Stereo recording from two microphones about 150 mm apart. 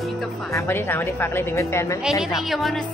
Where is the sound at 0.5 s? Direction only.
20° left (ahead or behind).